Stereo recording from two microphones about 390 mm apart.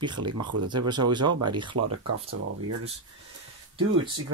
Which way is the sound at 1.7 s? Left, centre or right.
Right.